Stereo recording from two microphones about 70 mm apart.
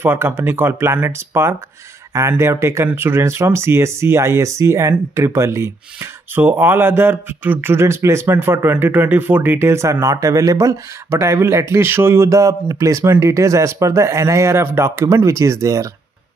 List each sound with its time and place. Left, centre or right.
0.0 s a man's voice: right
2.9 s a man's voice: right
6.5 s a man's voice: right
12.3 s speech: right